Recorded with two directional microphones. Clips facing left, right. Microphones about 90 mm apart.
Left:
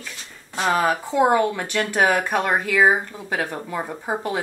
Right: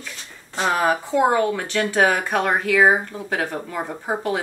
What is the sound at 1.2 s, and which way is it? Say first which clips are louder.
Speech: left 1 dB; 5° left (ahead or behind).